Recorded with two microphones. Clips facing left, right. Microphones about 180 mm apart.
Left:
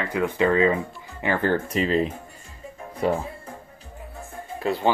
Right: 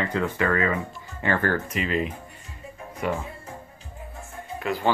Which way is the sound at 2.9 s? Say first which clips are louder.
Left 4 dB; 30° left (ahead or behind).